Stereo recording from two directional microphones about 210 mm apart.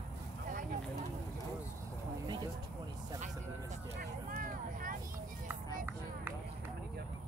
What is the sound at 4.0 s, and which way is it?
Vehicle, 45° right (ahead or behind).